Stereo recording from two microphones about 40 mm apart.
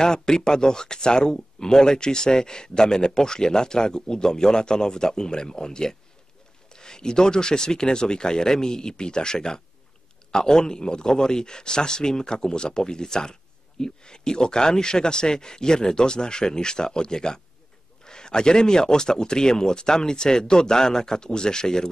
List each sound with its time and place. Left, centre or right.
0.0 s speech: centre